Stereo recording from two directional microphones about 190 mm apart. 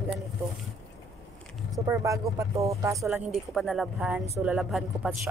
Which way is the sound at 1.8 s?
15° right (ahead or behind).